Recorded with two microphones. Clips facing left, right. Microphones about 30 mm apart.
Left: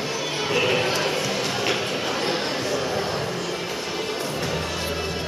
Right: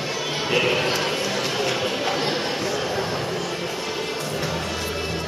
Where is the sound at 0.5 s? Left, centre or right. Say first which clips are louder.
Right 1 dB; centre.